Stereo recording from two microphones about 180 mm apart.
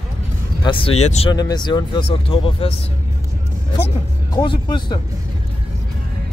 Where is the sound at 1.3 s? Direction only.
20° left (ahead or behind).